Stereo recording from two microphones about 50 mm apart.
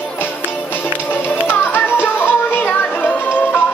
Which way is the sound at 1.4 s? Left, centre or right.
Left.